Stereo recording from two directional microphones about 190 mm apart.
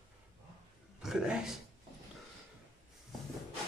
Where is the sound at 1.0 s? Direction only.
5° right (ahead or behind).